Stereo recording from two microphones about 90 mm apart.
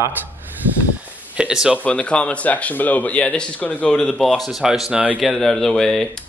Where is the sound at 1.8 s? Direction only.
15° left (ahead or behind); by 5.3 s 15° right (ahead or behind).